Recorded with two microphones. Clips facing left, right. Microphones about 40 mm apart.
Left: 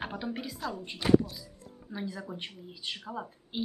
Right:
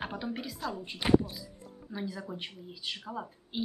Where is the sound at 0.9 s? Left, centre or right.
Right.